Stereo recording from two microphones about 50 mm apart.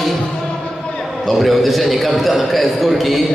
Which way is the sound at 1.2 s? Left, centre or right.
Centre.